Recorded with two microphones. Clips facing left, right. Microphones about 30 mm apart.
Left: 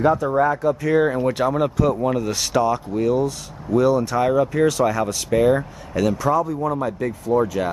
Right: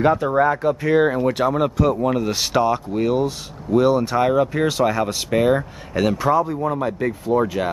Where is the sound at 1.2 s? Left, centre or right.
Centre.